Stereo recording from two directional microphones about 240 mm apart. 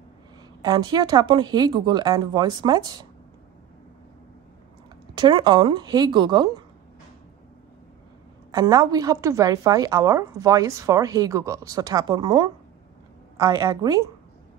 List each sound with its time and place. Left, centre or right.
0.6 s a woman's voice: centre
5.1 s a woman's voice: centre
8.5 s a woman's voice: centre